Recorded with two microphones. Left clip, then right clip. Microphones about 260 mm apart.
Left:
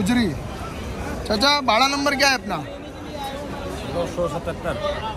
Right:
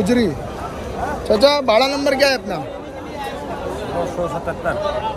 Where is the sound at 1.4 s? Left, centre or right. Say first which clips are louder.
Right 4 dB; left.